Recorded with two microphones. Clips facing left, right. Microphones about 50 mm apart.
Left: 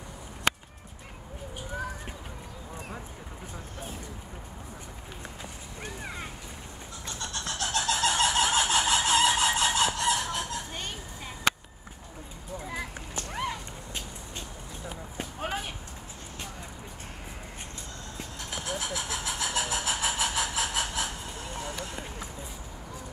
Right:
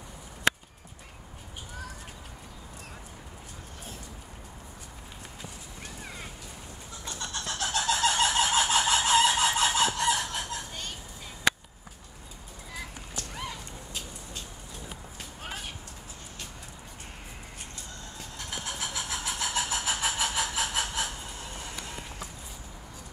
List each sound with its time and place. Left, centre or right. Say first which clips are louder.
7.1 s vehicle: even; centre
12.6 s a sound: left 3 dB; left
15.1 s run: left 8 dB; centre
18.1 s vehicle: left 1 dB; centre